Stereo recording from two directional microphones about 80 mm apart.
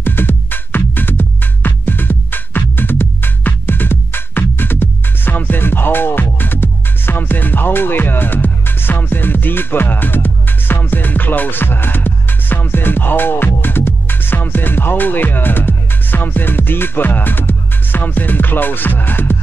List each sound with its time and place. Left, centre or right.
0.0 s music: left